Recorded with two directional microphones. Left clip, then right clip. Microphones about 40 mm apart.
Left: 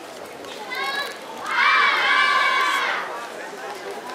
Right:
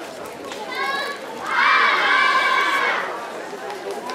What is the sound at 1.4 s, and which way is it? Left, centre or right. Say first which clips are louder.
Crowd: right 1 dB; left.